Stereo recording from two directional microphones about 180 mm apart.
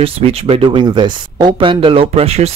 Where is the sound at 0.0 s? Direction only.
30° right (ahead or behind).